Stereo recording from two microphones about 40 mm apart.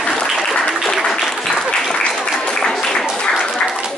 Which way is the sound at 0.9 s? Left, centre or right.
Centre.